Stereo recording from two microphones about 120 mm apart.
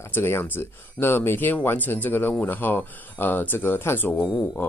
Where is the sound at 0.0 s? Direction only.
20° left (ahead or behind).